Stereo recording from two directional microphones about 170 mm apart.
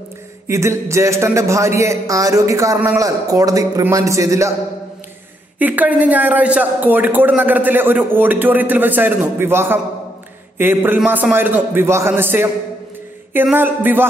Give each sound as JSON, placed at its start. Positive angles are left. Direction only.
{"t": 0.5, "sound": "a man's voice", "side_deg": -15}
{"t": 5.6, "sound": "a man's voice", "side_deg": -10}